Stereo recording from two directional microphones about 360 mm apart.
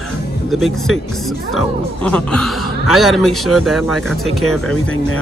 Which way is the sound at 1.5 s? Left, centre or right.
Centre.